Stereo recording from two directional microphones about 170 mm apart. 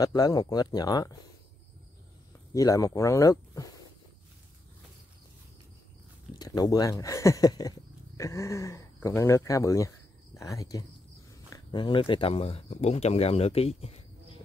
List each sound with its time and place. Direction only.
0.0 s speech: 20° left (ahead or behind)
2.5 s speech: 20° left (ahead or behind)
6.3 s speech: 20° left (ahead or behind)